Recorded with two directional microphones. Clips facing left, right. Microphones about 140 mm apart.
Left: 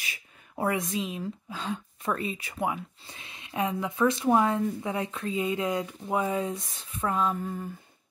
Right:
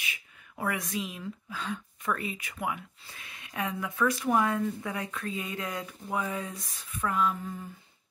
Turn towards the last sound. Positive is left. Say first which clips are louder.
# left 2 dB
turn(degrees=30)  # may be behind; listen again after turning